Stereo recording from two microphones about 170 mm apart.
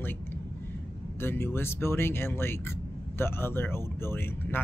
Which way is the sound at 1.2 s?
15° left (ahead or behind).